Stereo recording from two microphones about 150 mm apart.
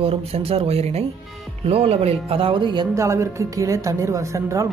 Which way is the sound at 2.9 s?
20° right (ahead or behind).